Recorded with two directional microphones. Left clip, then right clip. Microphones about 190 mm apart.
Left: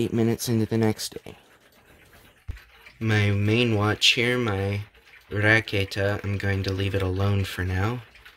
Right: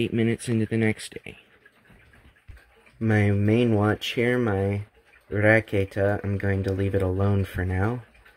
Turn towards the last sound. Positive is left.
turn(degrees=0)  # may be behind; listen again after turning